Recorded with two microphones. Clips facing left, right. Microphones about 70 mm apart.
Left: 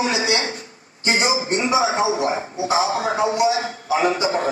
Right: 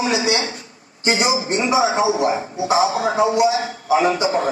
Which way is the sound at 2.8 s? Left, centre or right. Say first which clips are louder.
Right 2 dB; left.